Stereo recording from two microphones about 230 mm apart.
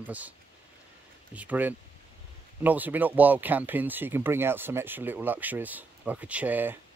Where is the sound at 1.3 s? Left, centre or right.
Centre.